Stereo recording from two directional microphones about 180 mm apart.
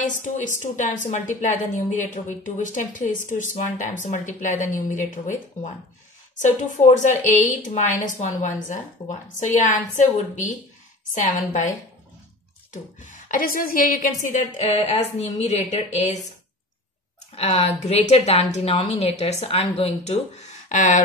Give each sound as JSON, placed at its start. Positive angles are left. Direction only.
{"t": 0.0, "sound": "a woman's voice", "side_deg": 45}
{"t": 9.4, "sound": "a woman's voice", "side_deg": 45}
{"t": 12.7, "sound": "a woman's voice", "side_deg": 45}
{"t": 17.4, "sound": "a woman's voice", "side_deg": 35}